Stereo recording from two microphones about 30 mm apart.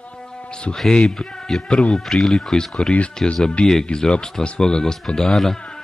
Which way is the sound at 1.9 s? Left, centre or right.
Centre.